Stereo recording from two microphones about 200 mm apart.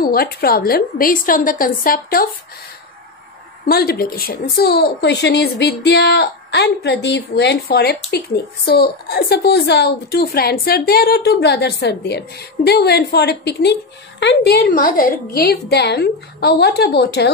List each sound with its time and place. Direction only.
0.0 s a woman's voice: 45° left (ahead or behind)
3.6 s a woman's voice: 50° left (ahead or behind)